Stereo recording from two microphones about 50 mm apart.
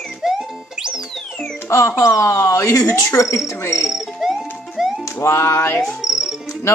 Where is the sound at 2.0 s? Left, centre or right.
Left.